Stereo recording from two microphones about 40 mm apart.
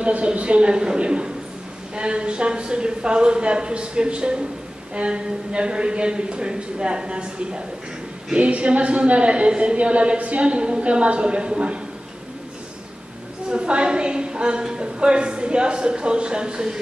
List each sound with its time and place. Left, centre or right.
0.0 s a woman's voice: right
13.5 s a woman's voice: right